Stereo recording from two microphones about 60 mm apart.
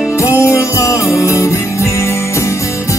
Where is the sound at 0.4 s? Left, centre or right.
Left.